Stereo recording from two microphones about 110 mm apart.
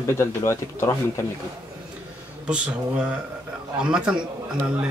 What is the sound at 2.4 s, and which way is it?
A man's voice, 10° right (ahead or behind).